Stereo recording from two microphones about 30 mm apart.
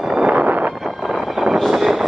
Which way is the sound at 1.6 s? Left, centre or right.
Centre.